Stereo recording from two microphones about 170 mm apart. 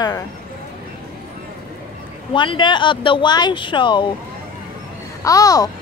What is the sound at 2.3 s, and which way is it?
Speech, 30° left (ahead or behind).